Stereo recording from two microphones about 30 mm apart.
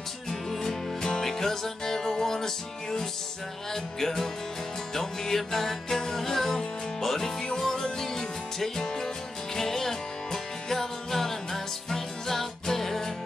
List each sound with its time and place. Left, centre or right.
0.3 s music: centre